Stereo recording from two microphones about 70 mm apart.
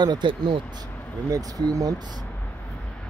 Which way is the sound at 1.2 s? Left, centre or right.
Right.